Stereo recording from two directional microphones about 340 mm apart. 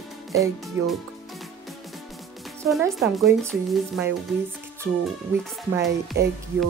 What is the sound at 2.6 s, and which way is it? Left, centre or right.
Speech, centre.